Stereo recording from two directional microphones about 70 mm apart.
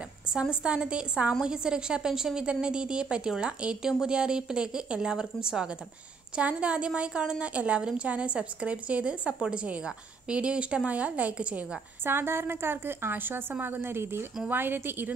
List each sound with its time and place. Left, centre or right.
0.3 s a woman's voice: centre
12.0 s a woman's voice: right